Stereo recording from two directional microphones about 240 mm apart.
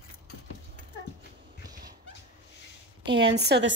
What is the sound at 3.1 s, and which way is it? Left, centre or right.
Speech, right.